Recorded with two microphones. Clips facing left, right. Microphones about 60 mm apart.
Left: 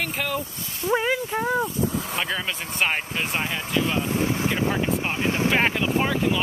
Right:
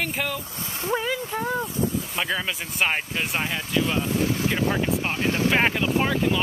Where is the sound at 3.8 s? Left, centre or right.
Left.